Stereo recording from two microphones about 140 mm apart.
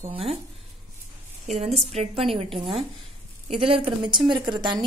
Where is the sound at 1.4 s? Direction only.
50° right (ahead or behind).